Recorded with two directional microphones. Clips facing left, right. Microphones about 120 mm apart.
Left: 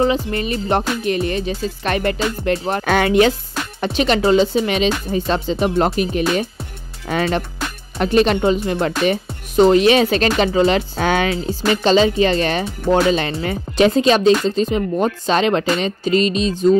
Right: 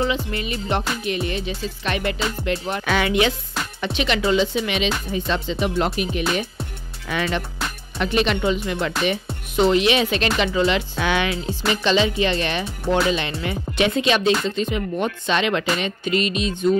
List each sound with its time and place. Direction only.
0.0 s music: 40° left (ahead or behind)
3.8 s speech: 40° left (ahead or behind)